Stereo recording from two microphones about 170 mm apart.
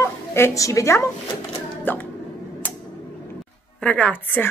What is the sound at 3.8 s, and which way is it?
Speech, 5° left (ahead or behind).